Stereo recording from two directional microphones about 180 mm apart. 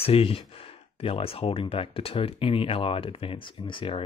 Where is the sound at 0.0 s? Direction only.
30° left (ahead or behind).